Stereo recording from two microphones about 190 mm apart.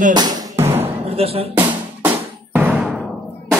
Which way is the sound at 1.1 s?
30° right (ahead or behind).